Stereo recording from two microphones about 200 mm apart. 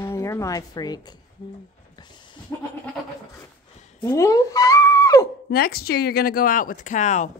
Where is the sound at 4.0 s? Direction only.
15° left (ahead or behind).